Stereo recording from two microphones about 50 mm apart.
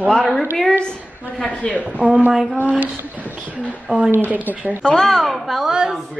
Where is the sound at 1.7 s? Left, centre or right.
Right.